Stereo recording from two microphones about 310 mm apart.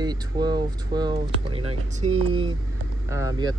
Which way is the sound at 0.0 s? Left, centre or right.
Centre.